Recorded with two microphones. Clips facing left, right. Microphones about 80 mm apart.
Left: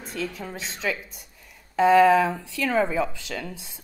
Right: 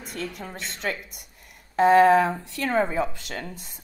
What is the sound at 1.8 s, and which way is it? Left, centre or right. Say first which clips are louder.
Speech: even; right.